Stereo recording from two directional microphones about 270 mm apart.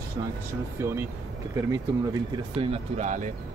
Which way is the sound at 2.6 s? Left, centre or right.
Right.